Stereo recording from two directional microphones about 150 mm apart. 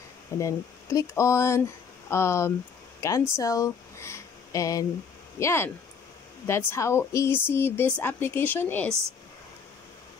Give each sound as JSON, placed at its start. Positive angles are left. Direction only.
{"t": 0.4, "sound": "speech", "side_deg": 20}